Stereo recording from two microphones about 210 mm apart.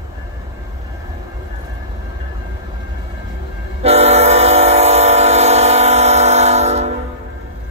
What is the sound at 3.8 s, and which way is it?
Train, 30° right (ahead or behind).